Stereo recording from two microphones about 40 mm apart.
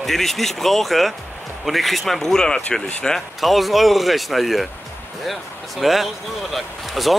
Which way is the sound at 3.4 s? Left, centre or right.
Centre.